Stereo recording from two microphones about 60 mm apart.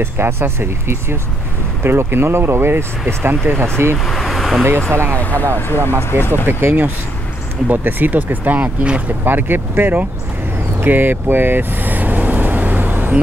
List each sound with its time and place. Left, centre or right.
0.0 s speech: right
4.0 s vehicle: centre
5.1 s speech: left
6.4 s speech: right
10.8 s vehicle: right